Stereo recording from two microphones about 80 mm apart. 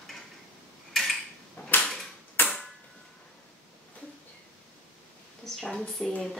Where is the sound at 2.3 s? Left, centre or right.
Left.